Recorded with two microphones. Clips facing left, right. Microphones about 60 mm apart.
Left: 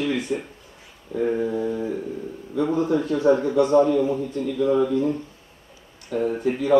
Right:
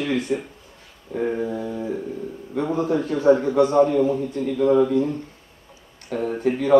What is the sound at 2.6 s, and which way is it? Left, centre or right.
A man's voice, right.